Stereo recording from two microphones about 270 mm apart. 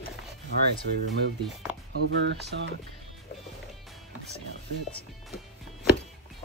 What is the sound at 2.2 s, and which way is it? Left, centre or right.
Speech, right.